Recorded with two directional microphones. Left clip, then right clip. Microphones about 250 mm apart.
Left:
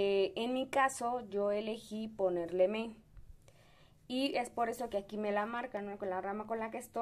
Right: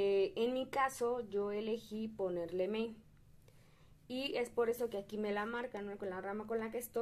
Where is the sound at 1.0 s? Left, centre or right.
Centre.